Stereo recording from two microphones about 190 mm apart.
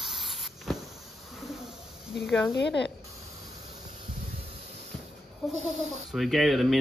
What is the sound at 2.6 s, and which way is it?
Speech, 65° left (ahead or behind).